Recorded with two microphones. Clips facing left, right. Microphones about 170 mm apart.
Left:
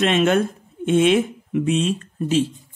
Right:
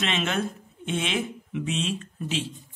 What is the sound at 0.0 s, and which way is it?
Speech, 50° left (ahead or behind).